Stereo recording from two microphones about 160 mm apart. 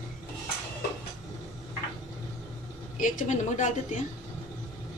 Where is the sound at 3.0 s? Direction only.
55° left (ahead or behind).